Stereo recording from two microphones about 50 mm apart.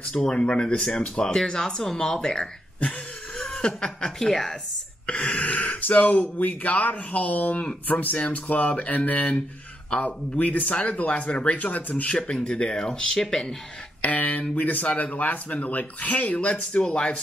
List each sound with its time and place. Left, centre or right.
0.1 s speech: centre
4.3 s a woman's voice: centre
5.0 s speech: left; by 13.6 s centre
14.0 s speech: left; by 17.1 s centre